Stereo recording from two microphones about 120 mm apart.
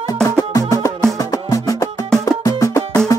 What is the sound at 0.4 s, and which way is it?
Music, 30° left (ahead or behind).